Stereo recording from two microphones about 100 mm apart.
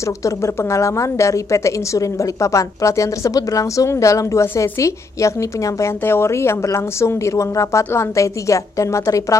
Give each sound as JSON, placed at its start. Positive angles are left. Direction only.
{"t": 0.2, "sound": "a woman's voice", "side_deg": 30}